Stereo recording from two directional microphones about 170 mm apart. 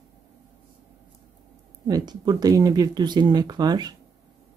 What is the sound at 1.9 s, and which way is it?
Speech, 25° right (ahead or behind).